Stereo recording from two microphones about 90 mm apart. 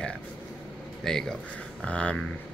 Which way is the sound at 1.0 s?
5° left (ahead or behind).